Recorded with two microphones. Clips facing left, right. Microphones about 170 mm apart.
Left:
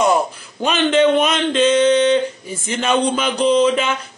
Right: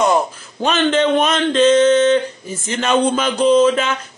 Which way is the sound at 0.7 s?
10° left (ahead or behind).